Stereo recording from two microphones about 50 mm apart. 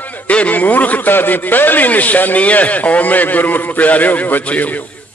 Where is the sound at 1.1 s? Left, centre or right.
Left.